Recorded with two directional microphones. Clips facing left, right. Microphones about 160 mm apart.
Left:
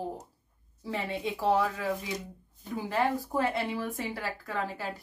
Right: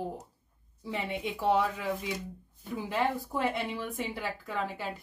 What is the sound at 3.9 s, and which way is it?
A woman's voice, 20° right (ahead or behind).